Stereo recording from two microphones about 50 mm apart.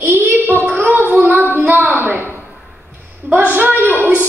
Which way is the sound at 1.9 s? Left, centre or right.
Right.